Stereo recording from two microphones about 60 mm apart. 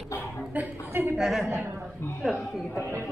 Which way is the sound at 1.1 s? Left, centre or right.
Centre.